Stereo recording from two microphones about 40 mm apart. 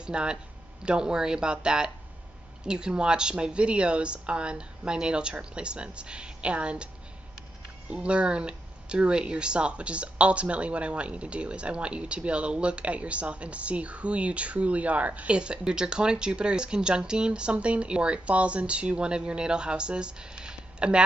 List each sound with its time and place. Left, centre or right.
0.0 s speech: right
7.9 s speech: right
15.3 s speech: right